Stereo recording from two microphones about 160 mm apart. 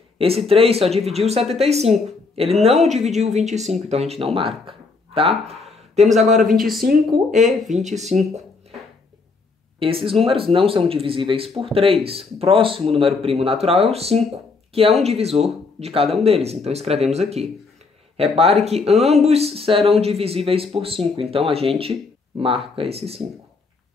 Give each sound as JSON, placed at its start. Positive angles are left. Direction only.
{"t": 0.5, "sound": "speech", "side_deg": -40}
{"t": 5.9, "sound": "speech", "side_deg": -45}
{"t": 6.8, "sound": "speech", "side_deg": -65}
{"t": 7.3, "sound": "speech", "side_deg": 0}
{"t": 7.9, "sound": "speech", "side_deg": -45}
{"t": 9.8, "sound": "speech", "side_deg": -35}